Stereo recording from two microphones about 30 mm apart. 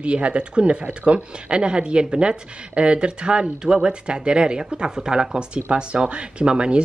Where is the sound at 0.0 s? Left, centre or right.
Right.